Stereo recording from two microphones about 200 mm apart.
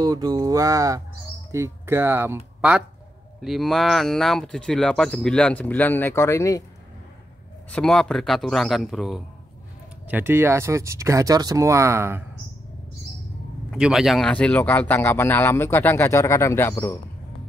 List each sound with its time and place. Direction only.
0.0 s speech: 20° right (ahead or behind); by 6.6 s 15° left (ahead or behind)
7.7 s speech: 5° left (ahead or behind); by 12.3 s 10° right (ahead or behind)
13.7 s speech: 5° right (ahead or behind); by 17.0 s 10° left (ahead or behind)